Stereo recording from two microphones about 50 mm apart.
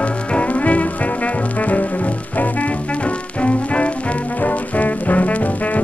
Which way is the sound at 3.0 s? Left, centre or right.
Left.